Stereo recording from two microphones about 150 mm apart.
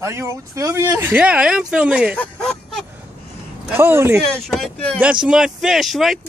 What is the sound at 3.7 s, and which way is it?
Speech, 15° right (ahead or behind).